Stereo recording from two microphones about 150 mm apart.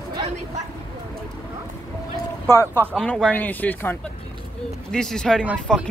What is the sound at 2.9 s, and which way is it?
Speech, 5° left (ahead or behind).